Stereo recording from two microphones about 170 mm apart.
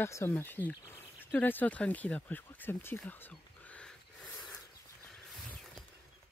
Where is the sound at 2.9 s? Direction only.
10° left (ahead or behind).